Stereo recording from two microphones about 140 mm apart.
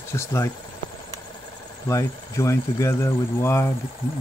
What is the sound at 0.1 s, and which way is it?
Speech, 20° left (ahead or behind).